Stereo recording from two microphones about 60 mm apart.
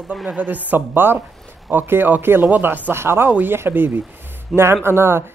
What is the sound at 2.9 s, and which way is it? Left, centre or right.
Speech, right.